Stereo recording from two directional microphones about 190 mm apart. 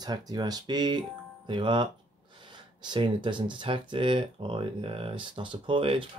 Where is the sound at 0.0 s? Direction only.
20° right (ahead or behind).